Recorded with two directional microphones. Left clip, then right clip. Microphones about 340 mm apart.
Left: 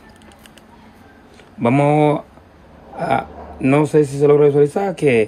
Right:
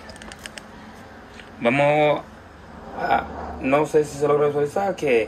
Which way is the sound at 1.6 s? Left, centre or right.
Centre.